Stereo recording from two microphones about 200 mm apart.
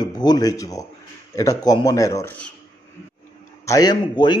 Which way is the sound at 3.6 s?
20° left (ahead or behind).